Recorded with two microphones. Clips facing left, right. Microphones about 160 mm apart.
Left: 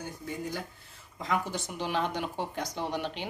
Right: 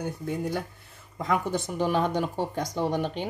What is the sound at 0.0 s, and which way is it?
Speech, 60° right (ahead or behind).